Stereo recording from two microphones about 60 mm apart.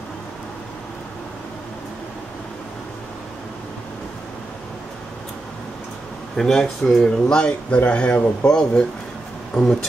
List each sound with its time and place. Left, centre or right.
6.3 s speech: centre